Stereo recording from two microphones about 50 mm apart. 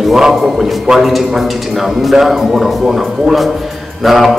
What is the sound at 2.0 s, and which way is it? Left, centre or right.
Speech, centre.